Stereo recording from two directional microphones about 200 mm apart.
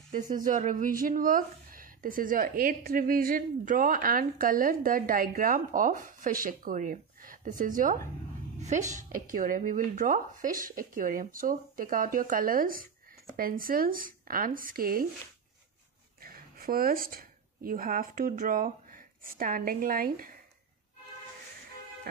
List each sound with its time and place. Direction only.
0.1 s speech: 40° right (ahead or behind)
16.2 s speech: 45° right (ahead or behind)